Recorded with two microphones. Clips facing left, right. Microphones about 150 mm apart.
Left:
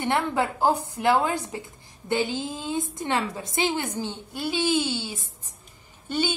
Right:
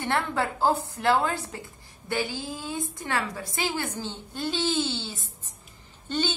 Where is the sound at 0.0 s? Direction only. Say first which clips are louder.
Left 3 dB; 15° left (ahead or behind).